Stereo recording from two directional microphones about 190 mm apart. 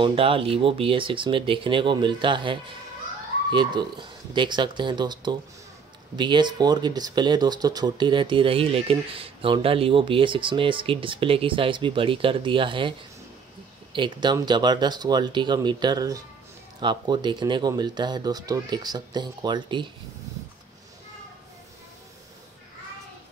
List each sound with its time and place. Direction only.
0.0 s speech: 30° right (ahead or behind)
13.9 s speech: 25° right (ahead or behind)